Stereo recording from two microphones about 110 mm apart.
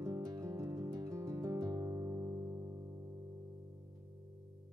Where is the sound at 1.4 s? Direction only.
35° right (ahead or behind).